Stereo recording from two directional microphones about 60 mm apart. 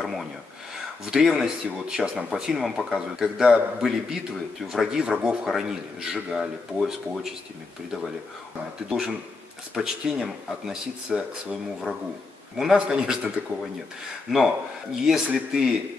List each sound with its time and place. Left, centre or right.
0.0 s a sound: centre
1.1 s a man's voice: centre
8.8 s a man's voice: centre
14.3 s a man's voice: centre